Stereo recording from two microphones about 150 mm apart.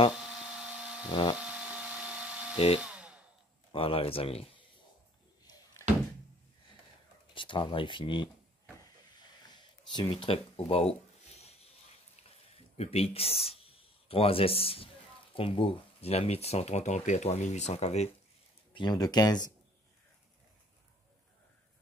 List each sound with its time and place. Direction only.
0.1 s a sound: 5° right (ahead or behind)
1.0 s a sound: 30° left (ahead or behind)
1.4 s vacuum cleaner: 5° right (ahead or behind)
2.5 s speech: 40° left (ahead or behind)
2.8 s hair dryer: 10° right (ahead or behind)
3.7 s speech: 40° left (ahead or behind)
7.3 s speech: 35° left (ahead or behind)
9.5 s a sound: 30° left (ahead or behind)
12.7 s speech: 45° left (ahead or behind)
18.7 s speech: 30° left (ahead or behind)